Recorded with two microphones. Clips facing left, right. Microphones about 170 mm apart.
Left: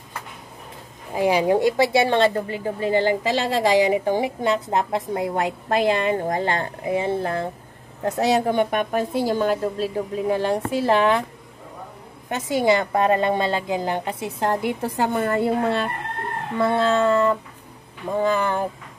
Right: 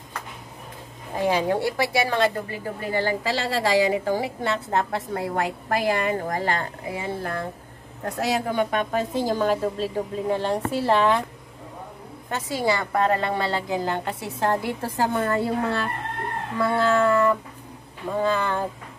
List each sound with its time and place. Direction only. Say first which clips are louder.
1.1 s a woman's voice: left 4 dB; 10° left (ahead or behind)
12.3 s a woman's voice: left 5 dB; 20° left (ahead or behind)